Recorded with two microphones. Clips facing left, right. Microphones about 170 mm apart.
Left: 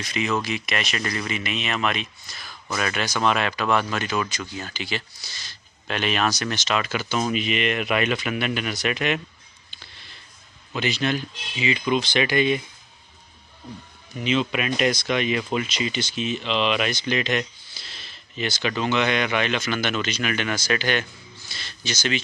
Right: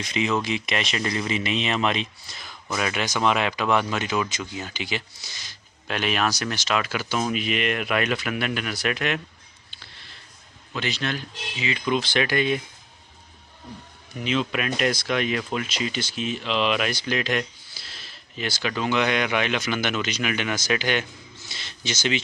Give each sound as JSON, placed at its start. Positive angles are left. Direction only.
{"t": 0.0, "sound": "speech", "side_deg": -20}
{"t": 10.7, "sound": "speech", "side_deg": 5}
{"t": 14.1, "sound": "speech", "side_deg": 0}